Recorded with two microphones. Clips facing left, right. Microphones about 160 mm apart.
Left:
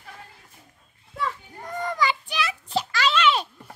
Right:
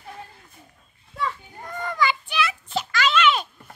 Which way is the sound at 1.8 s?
35° left (ahead or behind).